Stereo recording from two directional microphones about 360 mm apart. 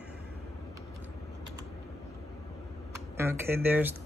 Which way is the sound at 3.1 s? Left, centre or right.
Centre.